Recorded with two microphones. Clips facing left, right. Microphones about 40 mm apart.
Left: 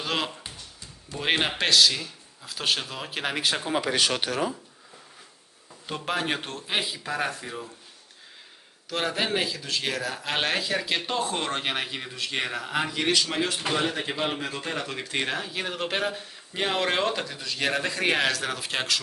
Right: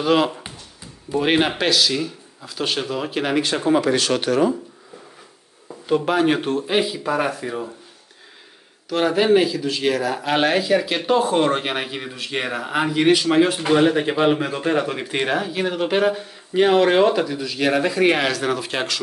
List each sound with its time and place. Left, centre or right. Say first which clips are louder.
0.0 s speech: right 11 dB; centre
3.8 s speech: right 5 dB; centre
4.3 s speech: right 10 dB; centre
5.9 s speech: right 10 dB; centre
8.8 s speech: right 10 dB; centre